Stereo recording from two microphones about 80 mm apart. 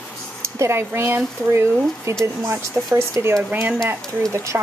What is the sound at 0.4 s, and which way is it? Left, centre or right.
Speech, right.